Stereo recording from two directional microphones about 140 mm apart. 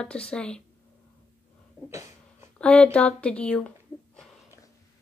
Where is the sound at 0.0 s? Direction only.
5° left (ahead or behind).